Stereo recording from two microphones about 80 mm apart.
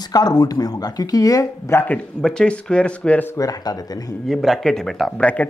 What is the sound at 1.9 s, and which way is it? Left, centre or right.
Speech, centre.